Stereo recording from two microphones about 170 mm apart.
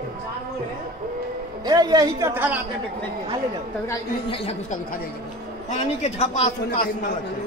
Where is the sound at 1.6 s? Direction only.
25° right (ahead or behind).